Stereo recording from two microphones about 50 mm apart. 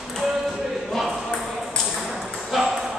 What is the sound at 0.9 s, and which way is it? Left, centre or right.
Ping, centre.